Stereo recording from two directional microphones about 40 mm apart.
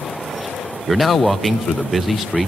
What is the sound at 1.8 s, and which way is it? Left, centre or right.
Speech, centre.